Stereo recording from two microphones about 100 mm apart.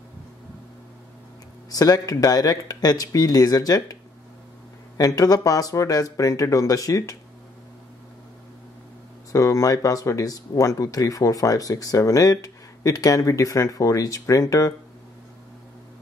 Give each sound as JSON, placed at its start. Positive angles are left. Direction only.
{"t": 1.7, "sound": "speech", "side_deg": 40}
{"t": 9.3, "sound": "speech", "side_deg": 35}